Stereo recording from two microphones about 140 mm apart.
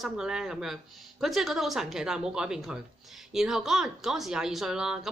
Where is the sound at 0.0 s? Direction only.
5° right (ahead or behind).